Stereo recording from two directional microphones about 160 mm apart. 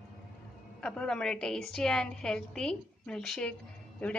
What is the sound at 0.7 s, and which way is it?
A woman's voice, 5° left (ahead or behind).